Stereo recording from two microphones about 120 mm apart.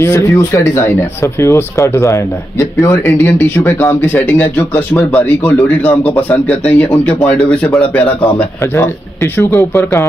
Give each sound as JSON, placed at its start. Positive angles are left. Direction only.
{"t": 0.0, "sound": "speech", "side_deg": 25}